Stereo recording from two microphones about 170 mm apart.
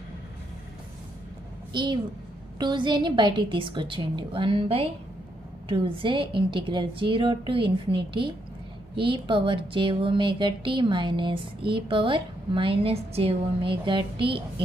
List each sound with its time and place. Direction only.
1.7 s a child's voice: 25° right (ahead or behind)